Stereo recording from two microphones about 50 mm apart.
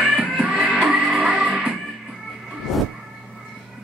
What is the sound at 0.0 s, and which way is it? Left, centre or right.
Music, right.